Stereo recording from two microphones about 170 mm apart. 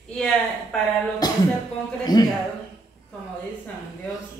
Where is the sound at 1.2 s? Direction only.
25° left (ahead or behind).